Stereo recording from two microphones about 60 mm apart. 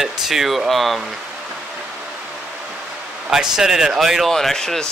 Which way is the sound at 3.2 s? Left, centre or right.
Centre.